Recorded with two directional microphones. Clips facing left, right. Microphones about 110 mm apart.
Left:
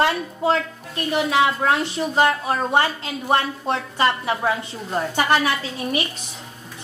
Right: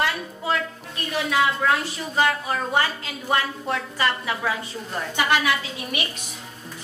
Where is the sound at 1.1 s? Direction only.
30° left (ahead or behind).